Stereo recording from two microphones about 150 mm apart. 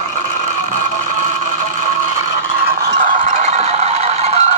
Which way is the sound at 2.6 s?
75° right (ahead or behind).